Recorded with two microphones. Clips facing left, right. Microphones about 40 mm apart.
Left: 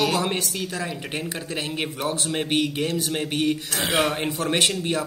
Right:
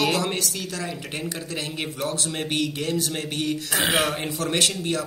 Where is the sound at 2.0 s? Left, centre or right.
Centre.